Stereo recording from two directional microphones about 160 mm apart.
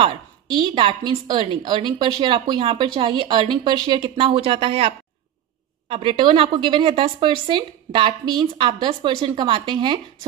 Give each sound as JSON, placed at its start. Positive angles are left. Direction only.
{"t": 0.0, "sound": "a woman's voice", "side_deg": -30}